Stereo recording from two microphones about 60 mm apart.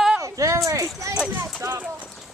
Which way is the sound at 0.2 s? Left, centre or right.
Right.